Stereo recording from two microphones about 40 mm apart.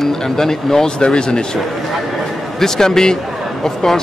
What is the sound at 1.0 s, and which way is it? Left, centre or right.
Speech, left.